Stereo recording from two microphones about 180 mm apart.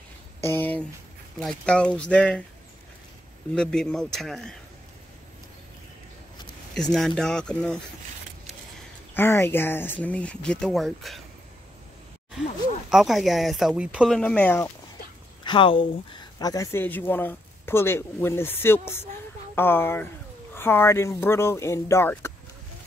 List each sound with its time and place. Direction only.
0.4 s speech: 10° left (ahead or behind)
3.5 s speech: 5° left (ahead or behind)
6.7 s speech: centre (ahead or behind)
9.1 s speech: 10° left (ahead or behind)
12.9 s speech: centre (ahead or behind)
15.4 s speech: 30° left (ahead or behind)